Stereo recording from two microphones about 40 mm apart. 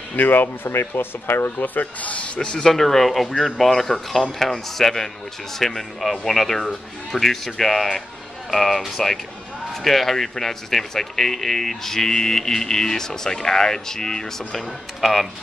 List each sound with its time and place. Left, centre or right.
0.1 s speech: left
0.7 s speech: left
1.6 s a man's voice: left
2.4 s speech: centre